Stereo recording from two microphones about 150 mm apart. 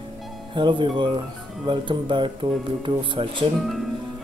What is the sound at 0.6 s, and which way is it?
Speech, 35° right (ahead or behind).